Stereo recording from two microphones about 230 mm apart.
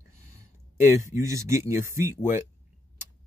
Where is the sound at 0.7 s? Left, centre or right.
Centre.